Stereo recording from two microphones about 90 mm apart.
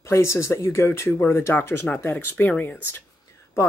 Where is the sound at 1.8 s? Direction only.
15° left (ahead or behind).